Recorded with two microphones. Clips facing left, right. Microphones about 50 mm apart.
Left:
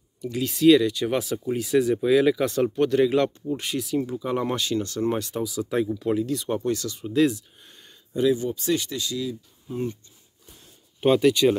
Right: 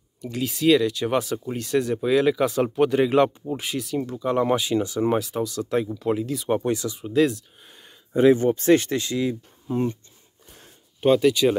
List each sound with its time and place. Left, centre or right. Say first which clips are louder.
0.2 s speech: left 3 dB; centre
3.5 s speech: left 1 dB; centre
4.6 s speech: right 3 dB; centre
6.5 s speech: right 6 dB; right
7.0 s speech: even; centre
8.1 s speech: right 6 dB; right
9.7 s speech: right 5 dB; right
11.0 s speech: right 1 dB; centre